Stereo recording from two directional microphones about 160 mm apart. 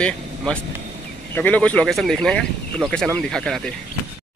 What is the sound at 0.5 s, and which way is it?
Speech, 5° left (ahead or behind).